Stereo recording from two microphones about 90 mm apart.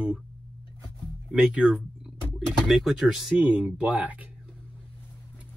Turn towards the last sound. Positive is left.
turn(degrees=-15)  # may be behind; listen again after turning